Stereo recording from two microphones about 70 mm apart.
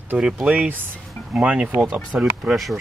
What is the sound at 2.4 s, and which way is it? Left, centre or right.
Speech, centre.